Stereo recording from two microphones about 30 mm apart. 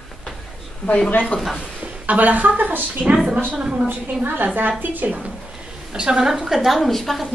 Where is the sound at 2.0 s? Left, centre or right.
Right.